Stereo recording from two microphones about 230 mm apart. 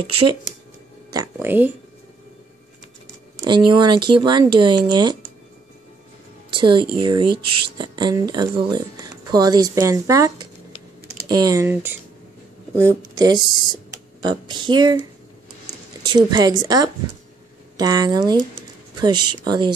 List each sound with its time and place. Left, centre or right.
1.1 s speech: centre
3.3 s speech: centre
6.5 s speech: centre
16.1 s speech: centre